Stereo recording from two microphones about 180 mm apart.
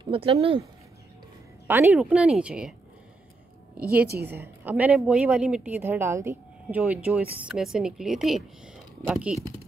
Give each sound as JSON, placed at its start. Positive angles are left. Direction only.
{"t": 0.0, "sound": "speech", "side_deg": -30}
{"t": 1.7, "sound": "a woman's voice", "side_deg": -10}
{"t": 4.3, "sound": "a woman's voice", "side_deg": -10}